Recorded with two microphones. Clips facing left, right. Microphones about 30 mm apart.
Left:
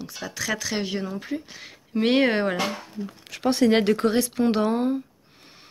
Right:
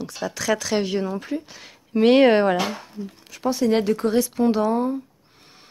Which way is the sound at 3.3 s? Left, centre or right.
Left.